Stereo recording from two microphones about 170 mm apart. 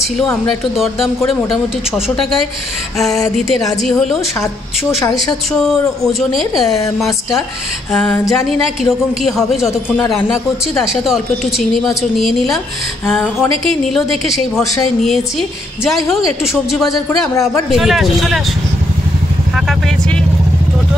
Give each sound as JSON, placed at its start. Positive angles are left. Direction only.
{"t": 0.7, "sound": "a woman's voice", "side_deg": 0}
{"t": 3.3, "sound": "a woman's voice", "side_deg": 0}
{"t": 5.5, "sound": "a woman's voice", "side_deg": 0}
{"t": 7.9, "sound": "a woman's voice", "side_deg": 5}
{"t": 9.9, "sound": "a man's voice", "side_deg": 15}
{"t": 10.8, "sound": "a woman's voice", "side_deg": 0}
{"t": 13.9, "sound": "a woman's voice", "side_deg": 0}
{"t": 16.7, "sound": "a woman's voice", "side_deg": 0}